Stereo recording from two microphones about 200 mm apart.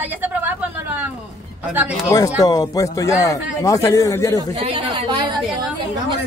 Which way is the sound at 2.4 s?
20° left (ahead or behind).